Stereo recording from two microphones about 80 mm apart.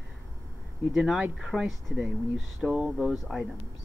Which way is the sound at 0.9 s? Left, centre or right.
Centre.